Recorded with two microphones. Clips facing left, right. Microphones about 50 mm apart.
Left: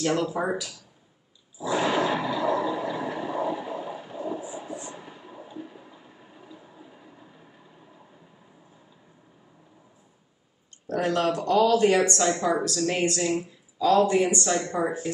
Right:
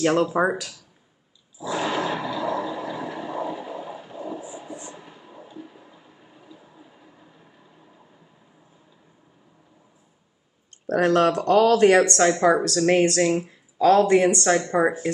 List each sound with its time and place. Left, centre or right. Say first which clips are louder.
0.0 s speech: right 6 dB; right
1.6 s roar: left 1 dB; centre
4.8 s a sound: left 1 dB; centre
10.9 s speech: right 6 dB; right